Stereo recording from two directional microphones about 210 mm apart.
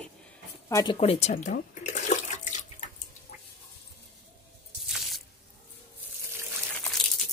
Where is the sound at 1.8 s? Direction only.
35° left (ahead or behind).